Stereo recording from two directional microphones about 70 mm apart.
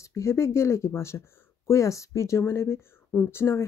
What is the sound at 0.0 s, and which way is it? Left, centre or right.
Speech, left.